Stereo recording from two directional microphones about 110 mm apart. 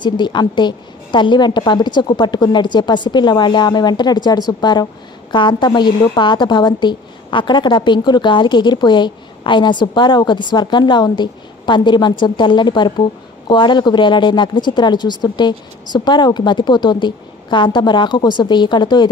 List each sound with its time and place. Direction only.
0.0 s a woman's voice: 45° left (ahead or behind)